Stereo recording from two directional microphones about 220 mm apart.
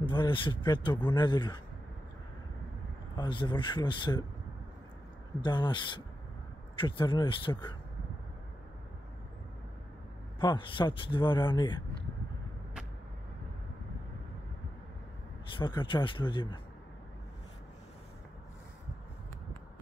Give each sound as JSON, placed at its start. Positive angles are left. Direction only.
{"t": 0.0, "sound": "speech", "side_deg": 20}
{"t": 3.2, "sound": "speech", "side_deg": 20}
{"t": 5.4, "sound": "speech", "side_deg": 20}
{"t": 10.4, "sound": "speech", "side_deg": 20}
{"t": 15.5, "sound": "speech", "side_deg": 20}